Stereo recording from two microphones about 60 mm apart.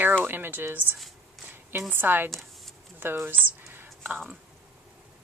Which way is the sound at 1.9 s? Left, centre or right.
Right.